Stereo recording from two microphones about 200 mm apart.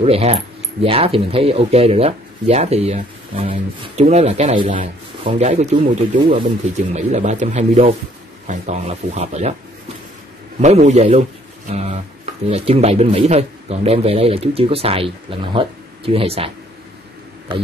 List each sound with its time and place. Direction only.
0.0 s speech: 30° right (ahead or behind)
10.6 s a man's voice: 35° right (ahead or behind)